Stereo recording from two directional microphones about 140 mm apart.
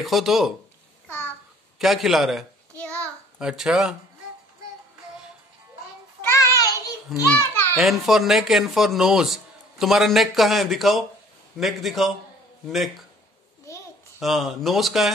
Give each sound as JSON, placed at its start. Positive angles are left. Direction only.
{"t": 0.0, "sound": "speech", "side_deg": 0}
{"t": 1.0, "sound": "a sound", "side_deg": 15}
{"t": 1.8, "sound": "speech", "side_deg": 0}
{"t": 2.8, "sound": "child singing", "side_deg": 10}
{"t": 3.3, "sound": "speech", "side_deg": -5}
{"t": 6.2, "sound": "child singing", "side_deg": 25}
{"t": 7.1, "sound": "speech", "side_deg": 0}
{"t": 14.2, "sound": "speech", "side_deg": 0}